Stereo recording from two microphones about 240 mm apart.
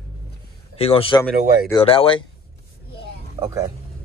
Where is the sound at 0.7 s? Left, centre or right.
Left.